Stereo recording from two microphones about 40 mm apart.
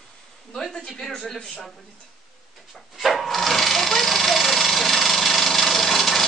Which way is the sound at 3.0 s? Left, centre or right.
Centre.